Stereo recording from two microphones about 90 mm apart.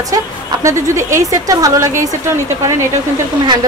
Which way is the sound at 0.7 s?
35° right (ahead or behind).